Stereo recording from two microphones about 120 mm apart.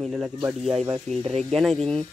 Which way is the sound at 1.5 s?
Centre (ahead or behind).